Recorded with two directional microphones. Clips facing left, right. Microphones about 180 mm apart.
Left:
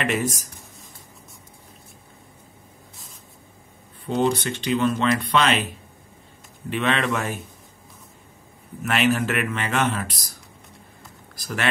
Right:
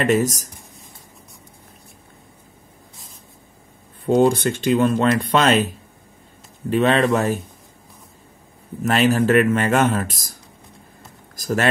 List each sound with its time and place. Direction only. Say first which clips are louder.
0.0 s speech: right 6 dB; 40° right (ahead or behind)
4.0 s speech: right 6 dB; 45° right (ahead or behind)
8.8 s speech: right 5 dB; 35° right (ahead or behind)
11.3 s a sound: right 7 dB; 40° right (ahead or behind)